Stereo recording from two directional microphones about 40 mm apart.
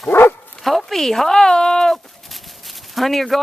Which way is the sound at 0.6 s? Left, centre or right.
Centre.